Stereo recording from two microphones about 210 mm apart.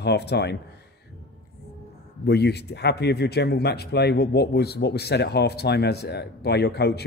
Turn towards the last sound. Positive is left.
turn(degrees=50)  # may be behind; listen again after turning